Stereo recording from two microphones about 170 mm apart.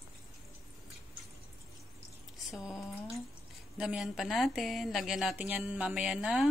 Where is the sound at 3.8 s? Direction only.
5° right (ahead or behind).